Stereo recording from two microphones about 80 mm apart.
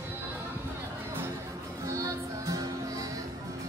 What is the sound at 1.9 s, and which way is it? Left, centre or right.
Music, right.